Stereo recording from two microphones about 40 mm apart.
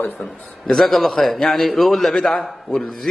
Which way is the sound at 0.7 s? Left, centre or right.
Centre.